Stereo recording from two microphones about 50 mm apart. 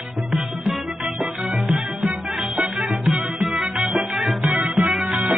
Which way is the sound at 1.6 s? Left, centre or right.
Centre.